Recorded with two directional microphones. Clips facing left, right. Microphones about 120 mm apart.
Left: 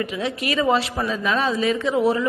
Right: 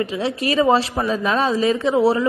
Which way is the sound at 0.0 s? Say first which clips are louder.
Right 3 dB; 30° right (ahead or behind).